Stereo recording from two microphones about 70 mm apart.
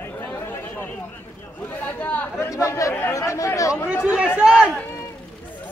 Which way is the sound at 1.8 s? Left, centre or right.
Left.